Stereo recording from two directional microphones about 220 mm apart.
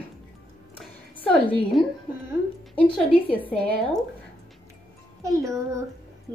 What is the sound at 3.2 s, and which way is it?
Speech, 5° left (ahead or behind).